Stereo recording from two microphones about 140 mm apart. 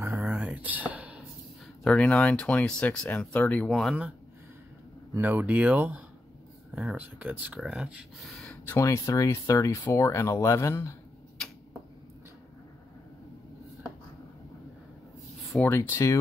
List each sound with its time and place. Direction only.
0.0 s a sound: 10° right (ahead or behind)
1.8 s speech: 10° left (ahead or behind)
5.1 s speech: 15° right (ahead or behind); by 8.5 s centre (ahead or behind)
8.6 s speech: 20° left (ahead or behind)
15.6 s speech: 15° left (ahead or behind)